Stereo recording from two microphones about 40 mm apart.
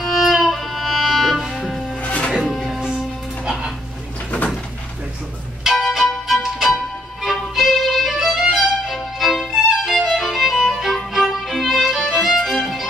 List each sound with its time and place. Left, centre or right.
0.0 s music: centre
2.0 s music: left
2.4 s music: centre
3.4 s music: centre
5.6 s music: centre
7.5 s violin: centre
9.8 s music: centre